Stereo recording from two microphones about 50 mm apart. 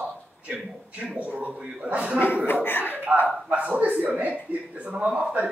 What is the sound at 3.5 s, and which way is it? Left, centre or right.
A man's voice, right.